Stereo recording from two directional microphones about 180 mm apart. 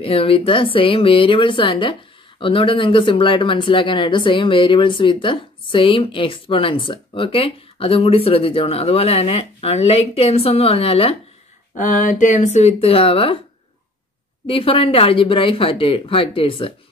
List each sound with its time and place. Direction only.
0.0 s speech: 30° left (ahead or behind)
11.8 s speech: 45° left (ahead or behind)
14.4 s speech: 30° left (ahead or behind)